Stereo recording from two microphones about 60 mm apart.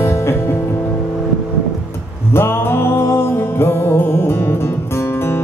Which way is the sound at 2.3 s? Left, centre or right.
Left.